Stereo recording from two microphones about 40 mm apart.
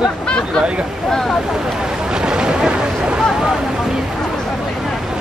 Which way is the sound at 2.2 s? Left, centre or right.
Centre.